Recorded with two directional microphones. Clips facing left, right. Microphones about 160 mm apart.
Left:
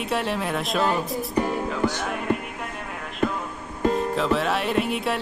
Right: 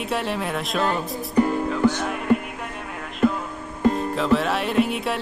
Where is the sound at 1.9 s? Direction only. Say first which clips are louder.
Right 5 dB; 5° left (ahead or behind).